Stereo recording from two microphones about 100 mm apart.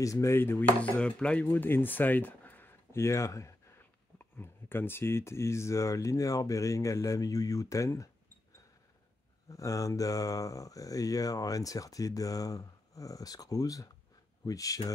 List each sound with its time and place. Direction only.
0.0 s dishes: 30° left (ahead or behind)
0.7 s speech: 15° left (ahead or behind); by 3.8 s 30° left (ahead or behind)
4.2 s speech: 20° left (ahead or behind)
9.5 s speech: 35° left (ahead or behind)